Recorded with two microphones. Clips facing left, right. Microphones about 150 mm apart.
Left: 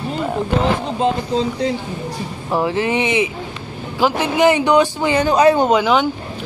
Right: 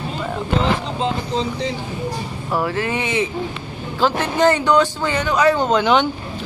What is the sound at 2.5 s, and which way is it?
Speech, 20° left (ahead or behind).